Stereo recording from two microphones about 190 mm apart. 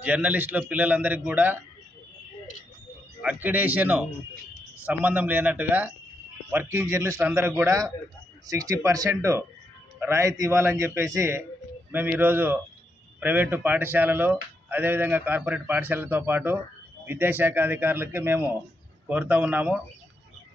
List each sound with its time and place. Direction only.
0.0 s speech: 10° right (ahead or behind)
3.2 s speech: 10° right (ahead or behind)